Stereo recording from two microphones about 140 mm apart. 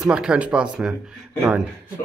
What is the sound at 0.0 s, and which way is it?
A man's voice, 5° right (ahead or behind).